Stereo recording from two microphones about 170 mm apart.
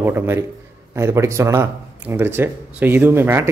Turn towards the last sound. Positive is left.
turn(degrees=-15)  # may be behind; listen again after turning